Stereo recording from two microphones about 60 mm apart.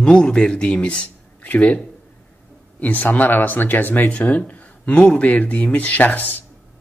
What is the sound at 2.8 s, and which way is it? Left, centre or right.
Speech, left.